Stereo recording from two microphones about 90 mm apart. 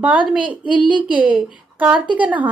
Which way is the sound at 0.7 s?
65° left (ahead or behind).